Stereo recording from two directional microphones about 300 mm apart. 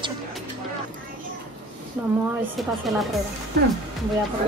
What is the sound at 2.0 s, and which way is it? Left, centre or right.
Speech, centre.